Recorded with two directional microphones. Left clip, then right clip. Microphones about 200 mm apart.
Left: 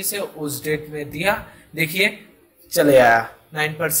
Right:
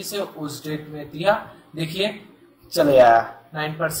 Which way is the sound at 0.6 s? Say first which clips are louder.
Left 7 dB; 35° left (ahead or behind).